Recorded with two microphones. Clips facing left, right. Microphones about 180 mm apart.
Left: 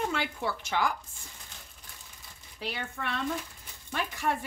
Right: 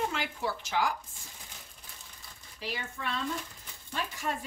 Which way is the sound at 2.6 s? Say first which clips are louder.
Left 1 dB; 60° left (ahead or behind).